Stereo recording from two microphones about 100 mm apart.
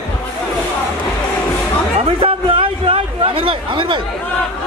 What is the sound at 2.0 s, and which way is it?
A man's voice, 65° right (ahead or behind).